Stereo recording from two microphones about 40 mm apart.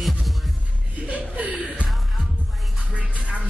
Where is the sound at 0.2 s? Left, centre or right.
Centre.